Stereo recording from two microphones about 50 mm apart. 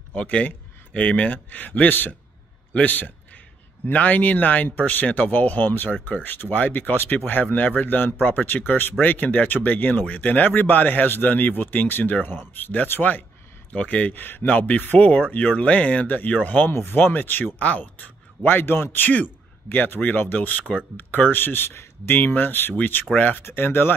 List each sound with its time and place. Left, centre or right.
0.1 s speech: left
13.7 s speech: left
14.5 s speech: left
16.6 s speech: left
18.4 s speech: left
23.1 s speech: left
23.4 s speech: left